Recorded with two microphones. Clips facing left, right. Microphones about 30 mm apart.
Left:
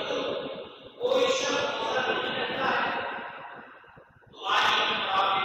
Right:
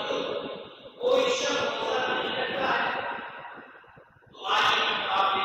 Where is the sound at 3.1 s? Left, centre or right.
Right.